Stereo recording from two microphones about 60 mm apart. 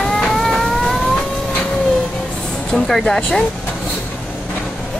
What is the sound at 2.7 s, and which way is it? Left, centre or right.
Speech, centre.